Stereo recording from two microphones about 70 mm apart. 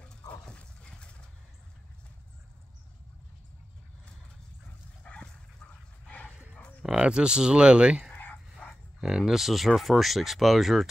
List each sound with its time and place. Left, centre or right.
0.3 s dog: centre
5.0 s dog: centre
6.0 s bow-wow: centre
6.5 s a sound: left
6.9 s speech: centre
8.1 s dog: left
9.0 s speech: centre